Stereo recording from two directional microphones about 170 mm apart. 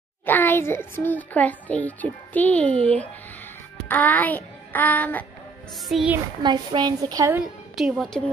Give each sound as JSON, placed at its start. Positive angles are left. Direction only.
{"t": 0.2, "sound": "a child's voice", "side_deg": 10}
{"t": 5.9, "sound": "a woman's voice", "side_deg": 0}
{"t": 6.4, "sound": "a woman's voice", "side_deg": -25}
{"t": 7.7, "sound": "a woman's voice", "side_deg": 0}